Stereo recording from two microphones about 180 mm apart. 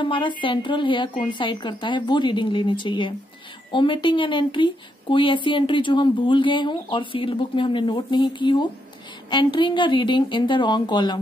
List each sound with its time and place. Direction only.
0.0 s speech: 25° left (ahead or behind)